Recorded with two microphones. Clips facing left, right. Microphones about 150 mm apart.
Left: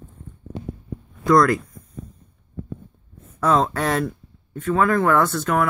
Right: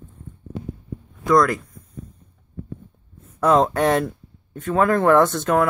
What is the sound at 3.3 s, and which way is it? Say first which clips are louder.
Speech: right 3 dB; 15° right (ahead or behind).